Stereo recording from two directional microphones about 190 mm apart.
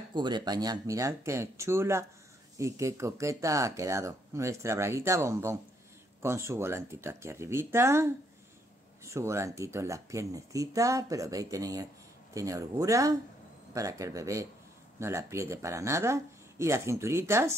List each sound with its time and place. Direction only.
0.1 s speech: 25° right (ahead or behind)